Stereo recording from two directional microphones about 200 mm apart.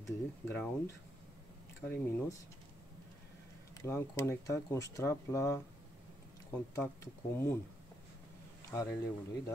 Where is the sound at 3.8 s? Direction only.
15° left (ahead or behind).